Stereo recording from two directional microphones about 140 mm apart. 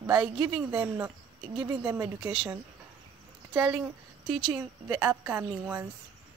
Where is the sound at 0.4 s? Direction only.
5° right (ahead or behind).